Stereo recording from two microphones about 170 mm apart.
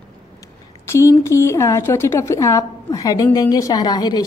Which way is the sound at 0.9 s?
15° left (ahead or behind).